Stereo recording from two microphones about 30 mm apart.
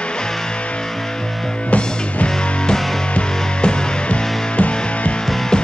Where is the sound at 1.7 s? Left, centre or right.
Left.